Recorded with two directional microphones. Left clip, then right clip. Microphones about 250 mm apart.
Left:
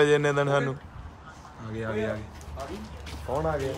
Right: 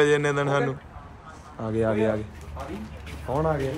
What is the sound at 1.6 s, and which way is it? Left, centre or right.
Speech, centre.